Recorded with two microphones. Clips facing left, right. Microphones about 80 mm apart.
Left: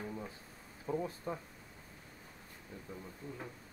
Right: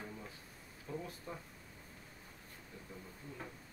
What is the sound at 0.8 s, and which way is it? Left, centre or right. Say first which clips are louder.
Speech: left 7 dB; left.